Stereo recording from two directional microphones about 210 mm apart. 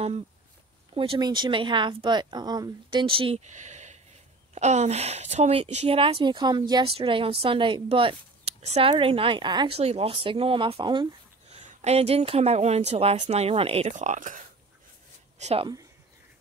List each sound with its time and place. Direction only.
0.9 s a woman's voice: 25° right (ahead or behind)